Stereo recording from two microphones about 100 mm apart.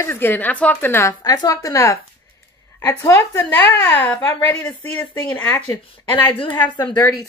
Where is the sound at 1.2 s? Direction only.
40° left (ahead or behind).